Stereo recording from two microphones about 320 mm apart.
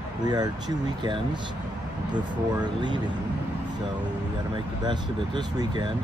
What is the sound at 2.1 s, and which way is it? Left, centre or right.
Speech, centre.